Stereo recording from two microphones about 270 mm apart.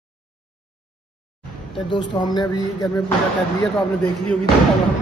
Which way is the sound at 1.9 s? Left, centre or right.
Centre.